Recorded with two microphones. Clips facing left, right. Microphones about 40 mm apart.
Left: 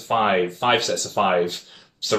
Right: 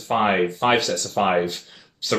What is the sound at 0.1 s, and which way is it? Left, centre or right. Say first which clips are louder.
Speech: even; centre.